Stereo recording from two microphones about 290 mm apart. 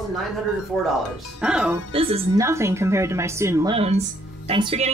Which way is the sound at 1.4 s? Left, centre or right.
Centre.